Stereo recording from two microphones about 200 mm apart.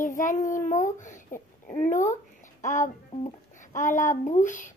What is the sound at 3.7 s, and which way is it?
Child singing, 40° left (ahead or behind).